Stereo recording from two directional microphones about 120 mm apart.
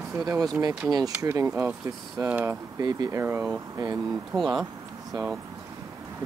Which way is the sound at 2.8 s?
30° right (ahead or behind).